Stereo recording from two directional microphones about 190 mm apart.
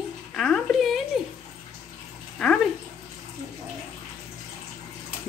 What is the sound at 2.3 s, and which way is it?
Bathtub, 5° left (ahead or behind).